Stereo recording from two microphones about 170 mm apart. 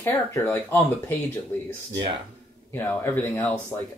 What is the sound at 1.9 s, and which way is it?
Speech, 30° right (ahead or behind).